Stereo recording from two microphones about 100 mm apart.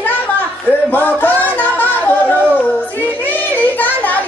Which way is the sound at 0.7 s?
20° left (ahead or behind).